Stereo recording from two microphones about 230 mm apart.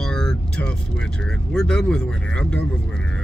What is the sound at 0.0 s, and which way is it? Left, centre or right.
Speech, centre.